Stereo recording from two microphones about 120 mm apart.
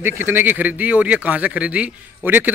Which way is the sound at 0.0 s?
15° right (ahead or behind).